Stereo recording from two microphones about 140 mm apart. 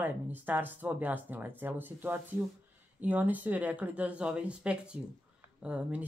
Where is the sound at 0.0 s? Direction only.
15° right (ahead or behind).